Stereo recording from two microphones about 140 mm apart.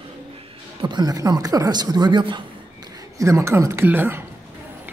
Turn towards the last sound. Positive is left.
turn(degrees=-15)  # may be behind; listen again after turning